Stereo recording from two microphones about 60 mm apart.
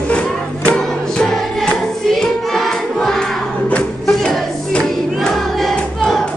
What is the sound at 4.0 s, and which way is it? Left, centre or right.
Music, centre.